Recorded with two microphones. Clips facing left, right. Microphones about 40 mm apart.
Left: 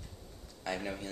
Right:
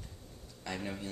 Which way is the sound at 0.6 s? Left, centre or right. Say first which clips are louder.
Left 2 dB; centre.